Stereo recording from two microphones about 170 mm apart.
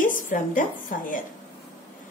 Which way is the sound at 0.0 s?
50° left (ahead or behind).